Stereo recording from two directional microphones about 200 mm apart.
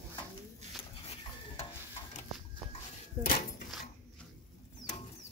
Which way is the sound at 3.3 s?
50° left (ahead or behind).